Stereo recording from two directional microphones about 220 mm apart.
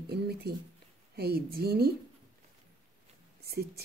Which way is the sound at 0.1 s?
45° right (ahead or behind).